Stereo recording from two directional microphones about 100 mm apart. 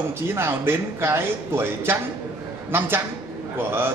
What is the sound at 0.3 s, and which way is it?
A man's voice, 25° right (ahead or behind).